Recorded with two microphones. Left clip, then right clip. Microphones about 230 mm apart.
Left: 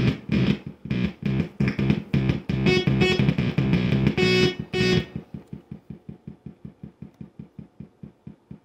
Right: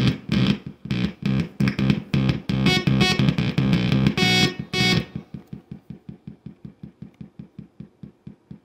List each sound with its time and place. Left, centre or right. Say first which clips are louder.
0.3 s music: right 2 dB; right